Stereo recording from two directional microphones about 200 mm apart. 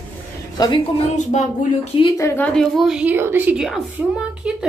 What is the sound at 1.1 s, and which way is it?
Speech, 35° left (ahead or behind).